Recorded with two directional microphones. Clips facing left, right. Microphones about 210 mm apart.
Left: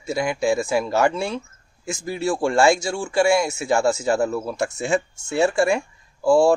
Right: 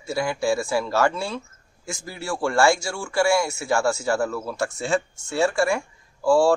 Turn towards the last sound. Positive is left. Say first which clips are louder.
# left 2 dB
turn(degrees=20)  # may be behind; listen again after turning